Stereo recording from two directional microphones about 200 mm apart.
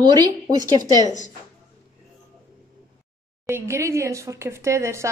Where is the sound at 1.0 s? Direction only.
35° left (ahead or behind).